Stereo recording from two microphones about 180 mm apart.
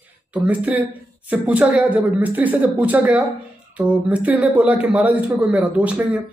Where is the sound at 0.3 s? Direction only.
10° right (ahead or behind).